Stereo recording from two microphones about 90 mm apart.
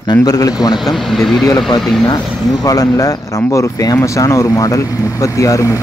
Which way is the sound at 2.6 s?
45° left (ahead or behind).